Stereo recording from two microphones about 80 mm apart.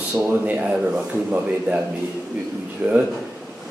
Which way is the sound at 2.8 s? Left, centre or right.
Right.